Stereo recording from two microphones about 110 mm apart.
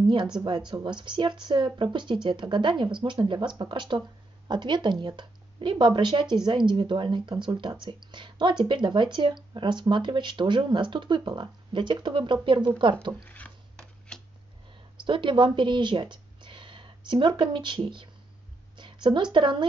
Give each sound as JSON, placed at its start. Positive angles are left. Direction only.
{"t": 0.0, "sound": "speech", "side_deg": -45}
{"t": 14.1, "sound": "a sound", "side_deg": 5}
{"t": 15.0, "sound": "a woman's voice", "side_deg": -45}